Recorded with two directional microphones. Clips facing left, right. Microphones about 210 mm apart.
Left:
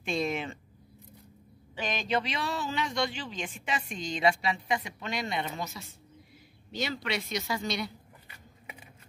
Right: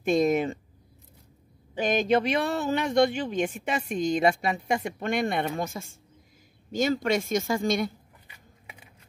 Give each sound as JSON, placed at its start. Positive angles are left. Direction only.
{"t": 0.0, "sound": "speech", "side_deg": -45}
{"t": 1.8, "sound": "speech", "side_deg": -50}